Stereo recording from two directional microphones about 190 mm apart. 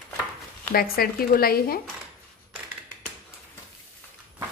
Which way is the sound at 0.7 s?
50° left (ahead or behind).